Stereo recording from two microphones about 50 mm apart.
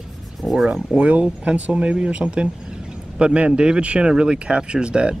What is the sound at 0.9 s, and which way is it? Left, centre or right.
Speech, right.